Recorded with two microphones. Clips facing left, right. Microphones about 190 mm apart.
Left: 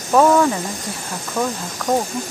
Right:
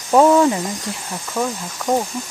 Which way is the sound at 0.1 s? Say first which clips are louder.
Right 1 dB; 20° right (ahead or behind).